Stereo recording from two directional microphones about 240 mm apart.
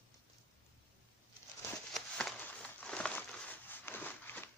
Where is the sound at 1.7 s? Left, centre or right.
Centre.